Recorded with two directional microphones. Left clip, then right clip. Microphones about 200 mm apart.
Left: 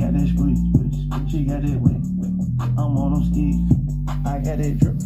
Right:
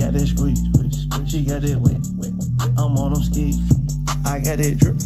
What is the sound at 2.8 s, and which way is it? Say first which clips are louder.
Music: even; 20° right (ahead or behind).